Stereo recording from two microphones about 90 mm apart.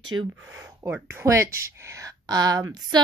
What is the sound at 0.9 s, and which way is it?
Speech, 30° right (ahead or behind).